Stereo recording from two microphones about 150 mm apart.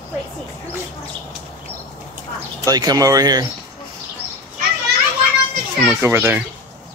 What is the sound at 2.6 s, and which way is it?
Speech, 25° right (ahead or behind).